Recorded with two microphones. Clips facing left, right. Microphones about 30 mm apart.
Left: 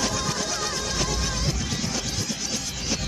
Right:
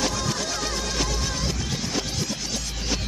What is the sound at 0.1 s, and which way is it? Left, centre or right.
Music, centre.